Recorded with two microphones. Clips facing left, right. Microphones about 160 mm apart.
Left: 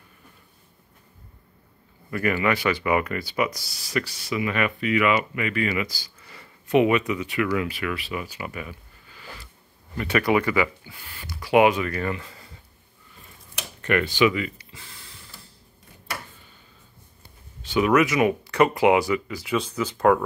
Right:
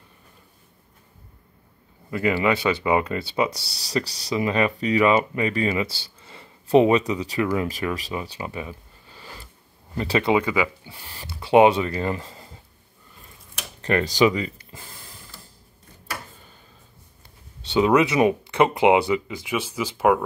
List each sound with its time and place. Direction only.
2.0 s speech: 20° right (ahead or behind)
10.8 s speech: 35° right (ahead or behind)
13.7 s speech: 30° right (ahead or behind)
14.7 s a sound: 50° right (ahead or behind)
17.6 s speech: 25° right (ahead or behind); by 20.2 s 10° right (ahead or behind)